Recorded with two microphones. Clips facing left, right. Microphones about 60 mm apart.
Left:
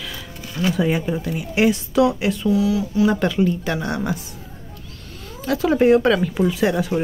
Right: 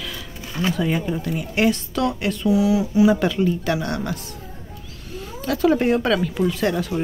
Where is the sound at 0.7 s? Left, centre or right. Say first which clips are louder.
Left 3 dB; centre.